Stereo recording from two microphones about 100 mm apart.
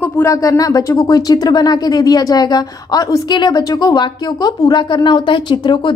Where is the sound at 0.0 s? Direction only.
30° left (ahead or behind).